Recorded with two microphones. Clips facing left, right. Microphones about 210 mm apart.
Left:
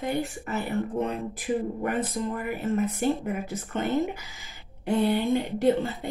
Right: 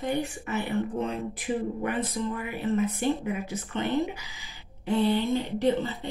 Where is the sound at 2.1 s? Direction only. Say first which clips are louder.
Left 1 dB; 45° left (ahead or behind).